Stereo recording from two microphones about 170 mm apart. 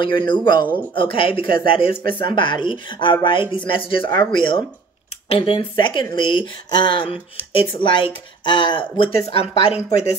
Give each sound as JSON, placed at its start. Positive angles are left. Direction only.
{"t": 0.2, "sound": "speech", "side_deg": 25}